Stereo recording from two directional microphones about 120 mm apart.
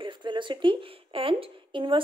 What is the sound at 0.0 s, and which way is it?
A woman's voice, 40° right (ahead or behind).